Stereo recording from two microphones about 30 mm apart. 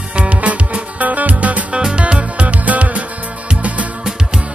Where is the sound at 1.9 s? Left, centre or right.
Right.